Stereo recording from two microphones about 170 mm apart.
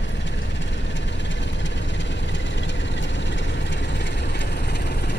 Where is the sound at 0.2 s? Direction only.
90° left.